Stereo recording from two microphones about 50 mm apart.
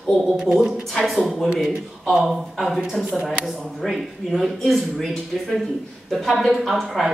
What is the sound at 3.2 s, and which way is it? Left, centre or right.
Speech, centre.